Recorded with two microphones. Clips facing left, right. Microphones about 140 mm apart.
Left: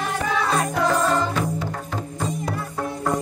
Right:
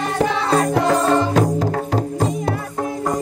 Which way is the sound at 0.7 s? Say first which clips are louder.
Right 2 dB; 60° right (ahead or behind).